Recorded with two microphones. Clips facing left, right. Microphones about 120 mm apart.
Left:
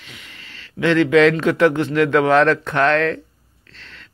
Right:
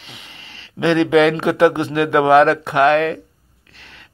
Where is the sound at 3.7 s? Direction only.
15° right (ahead or behind).